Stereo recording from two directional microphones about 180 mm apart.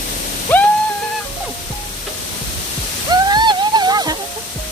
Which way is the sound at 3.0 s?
25° right (ahead or behind).